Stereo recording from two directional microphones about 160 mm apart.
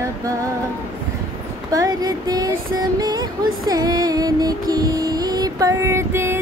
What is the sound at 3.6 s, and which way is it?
Music, 25° right (ahead or behind).